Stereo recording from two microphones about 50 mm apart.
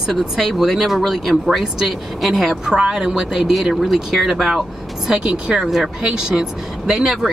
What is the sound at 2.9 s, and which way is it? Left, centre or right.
Speech, centre.